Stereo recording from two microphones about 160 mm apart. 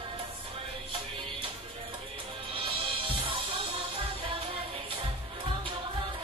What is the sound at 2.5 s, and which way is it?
Music, 35° right (ahead or behind).